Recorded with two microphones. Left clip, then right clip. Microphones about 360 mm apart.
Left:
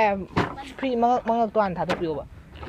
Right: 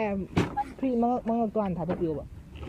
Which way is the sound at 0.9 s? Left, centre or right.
Left.